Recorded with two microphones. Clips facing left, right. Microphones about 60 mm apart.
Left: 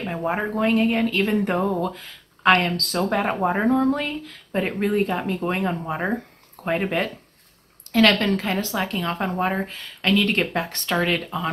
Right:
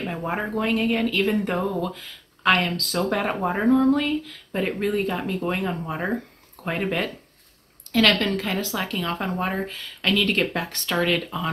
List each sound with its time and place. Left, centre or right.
0.0 s speech: centre